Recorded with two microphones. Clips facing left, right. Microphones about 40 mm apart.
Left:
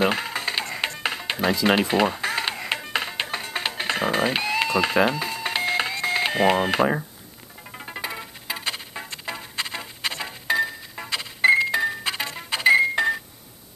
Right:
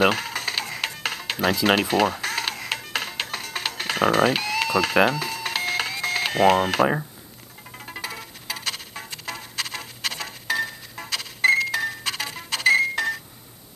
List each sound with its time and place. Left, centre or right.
0.0 s music: centre